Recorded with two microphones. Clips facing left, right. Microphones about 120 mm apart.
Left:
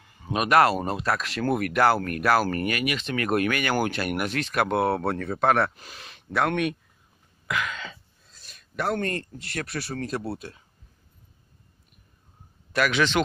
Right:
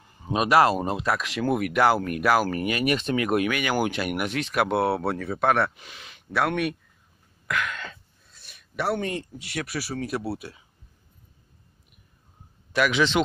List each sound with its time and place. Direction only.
0.0 s a sound: 30° right (ahead or behind)
0.5 s speech: 15° right (ahead or behind)
2.8 s speech: 40° right (ahead or behind)
3.2 s speech: 10° right (ahead or behind)
7.4 s a sound: centre (ahead or behind)
8.5 s speech: 5° right (ahead or behind)
12.7 s speech: 10° right (ahead or behind)